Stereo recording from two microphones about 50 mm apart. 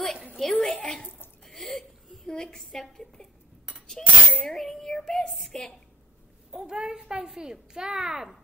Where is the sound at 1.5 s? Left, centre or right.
Centre.